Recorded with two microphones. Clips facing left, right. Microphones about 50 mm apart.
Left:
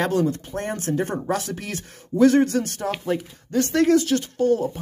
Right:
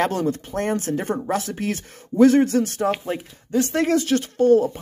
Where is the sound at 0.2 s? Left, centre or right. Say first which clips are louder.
Right 1 dB; right.